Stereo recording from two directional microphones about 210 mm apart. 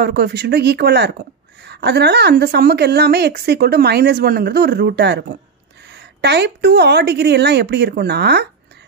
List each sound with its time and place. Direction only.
0.0 s speech: 50° right (ahead or behind)